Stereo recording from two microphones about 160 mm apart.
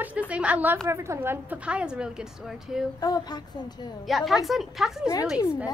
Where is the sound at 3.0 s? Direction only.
25° left (ahead or behind).